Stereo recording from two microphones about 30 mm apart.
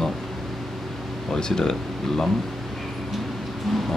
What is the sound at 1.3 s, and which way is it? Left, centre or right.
Speech, centre.